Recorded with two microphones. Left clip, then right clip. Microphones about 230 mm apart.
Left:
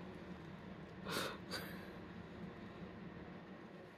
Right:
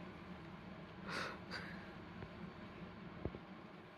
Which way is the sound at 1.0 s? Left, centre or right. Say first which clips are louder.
Left 2 dB; left.